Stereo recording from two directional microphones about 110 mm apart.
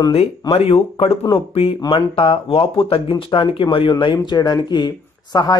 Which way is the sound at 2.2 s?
55° left (ahead or behind).